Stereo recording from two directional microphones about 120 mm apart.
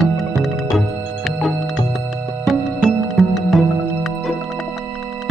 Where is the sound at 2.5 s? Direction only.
Centre (ahead or behind).